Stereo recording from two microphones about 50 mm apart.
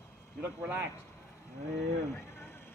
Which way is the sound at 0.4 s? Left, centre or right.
Right.